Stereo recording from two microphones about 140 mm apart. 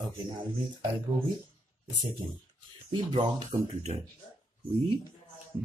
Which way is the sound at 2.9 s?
35° right (ahead or behind).